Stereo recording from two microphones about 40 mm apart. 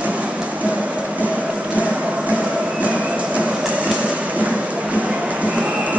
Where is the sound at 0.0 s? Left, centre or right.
Right.